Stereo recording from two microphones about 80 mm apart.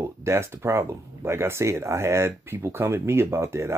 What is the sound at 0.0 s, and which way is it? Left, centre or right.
Speech, right.